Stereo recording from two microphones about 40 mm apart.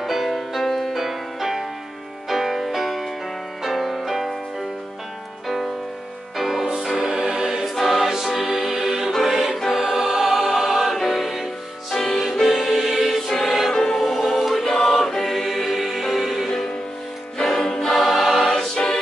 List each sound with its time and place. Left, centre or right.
0.0 s music: centre
6.3 s music: centre
7.2 s choir: centre
7.6 s music: centre
9.8 s choir: centre
11.0 s music: centre
13.7 s music: centre
14.7 s choir: centre
15.3 s music: centre
17.4 s choir: centre